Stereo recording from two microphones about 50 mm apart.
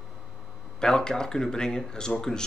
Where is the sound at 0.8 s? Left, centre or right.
Centre.